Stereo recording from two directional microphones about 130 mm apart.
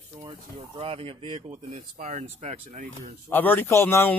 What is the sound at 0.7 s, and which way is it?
Speech, 45° right (ahead or behind).